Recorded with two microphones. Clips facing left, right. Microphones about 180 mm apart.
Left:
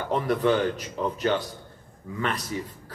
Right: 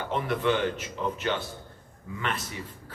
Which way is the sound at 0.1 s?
40° left (ahead or behind).